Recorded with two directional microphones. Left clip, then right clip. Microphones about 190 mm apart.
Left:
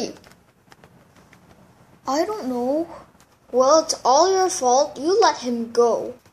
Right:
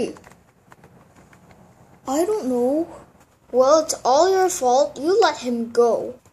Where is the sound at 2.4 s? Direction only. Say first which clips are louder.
Right 3 dB; 50° left (ahead or behind).